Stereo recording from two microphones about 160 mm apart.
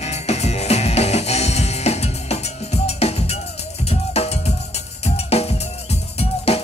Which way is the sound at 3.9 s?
40° left (ahead or behind).